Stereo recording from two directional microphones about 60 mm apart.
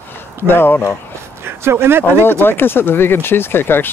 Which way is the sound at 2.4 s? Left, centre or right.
Left.